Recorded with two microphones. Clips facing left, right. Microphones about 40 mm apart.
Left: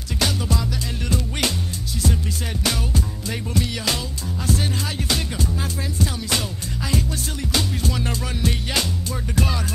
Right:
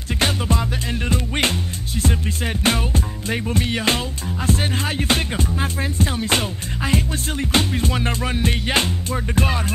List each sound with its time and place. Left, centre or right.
0.2 s music: right
2.6 s music: right